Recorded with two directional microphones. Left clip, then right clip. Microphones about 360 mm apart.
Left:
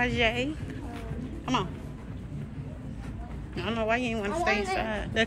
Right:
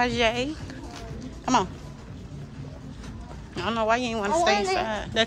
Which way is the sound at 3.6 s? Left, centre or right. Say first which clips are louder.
Right 4 dB; centre.